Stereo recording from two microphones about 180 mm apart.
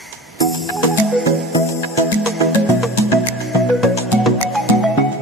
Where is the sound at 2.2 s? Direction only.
Centre (ahead or behind).